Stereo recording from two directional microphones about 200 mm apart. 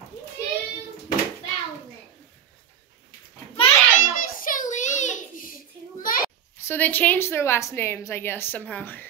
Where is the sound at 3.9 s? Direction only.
40° left (ahead or behind).